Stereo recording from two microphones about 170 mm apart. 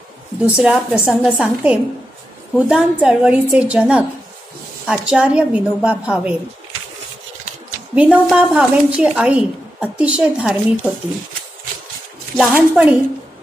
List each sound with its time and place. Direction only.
0.6 s a woman's voice: 5° right (ahead or behind)
7.9 s a woman's voice: 5° right (ahead or behind)
12.4 s a woman's voice: 5° right (ahead or behind)